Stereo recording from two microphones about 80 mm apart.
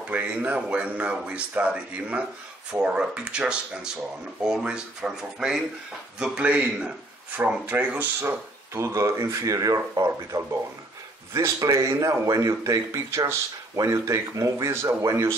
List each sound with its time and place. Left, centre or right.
0.1 s a man's voice: centre; by 15.3 s right